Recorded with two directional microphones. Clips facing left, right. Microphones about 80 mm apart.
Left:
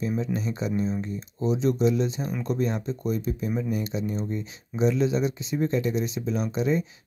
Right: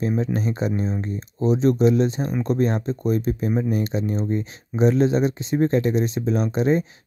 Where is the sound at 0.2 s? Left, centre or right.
Right.